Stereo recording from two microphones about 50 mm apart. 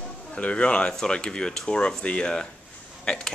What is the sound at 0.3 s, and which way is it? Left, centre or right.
Speech, left.